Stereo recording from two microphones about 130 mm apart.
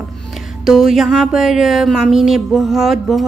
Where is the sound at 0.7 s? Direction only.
Centre (ahead or behind).